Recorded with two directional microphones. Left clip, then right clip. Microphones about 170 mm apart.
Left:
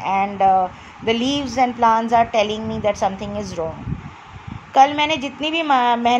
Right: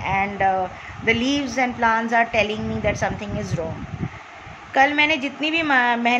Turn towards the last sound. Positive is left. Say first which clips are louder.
# left 2 dB
turn(degrees=20)  # may be behind; listen again after turning